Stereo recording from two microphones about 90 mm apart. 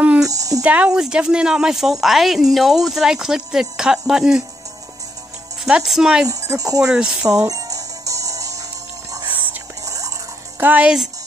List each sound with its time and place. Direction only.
0.2 s a sound: 40° right (ahead or behind)
0.7 s speech: 15° right (ahead or behind)
5.7 s speech: 5° right (ahead or behind)
6.2 s speech: 40° right (ahead or behind)
6.8 s speech: 10° right (ahead or behind)
7.2 s music: 40° right (ahead or behind)
9.8 s a sound: 40° right (ahead or behind)
10.6 s a woman's voice: 20° right (ahead or behind)